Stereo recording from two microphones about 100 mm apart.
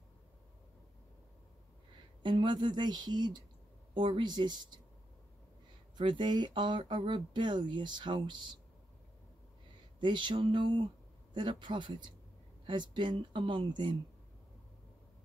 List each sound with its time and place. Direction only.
2.2 s speech: 50° right (ahead or behind)
5.9 s speech: 50° right (ahead or behind)
9.9 s speech: 50° right (ahead or behind)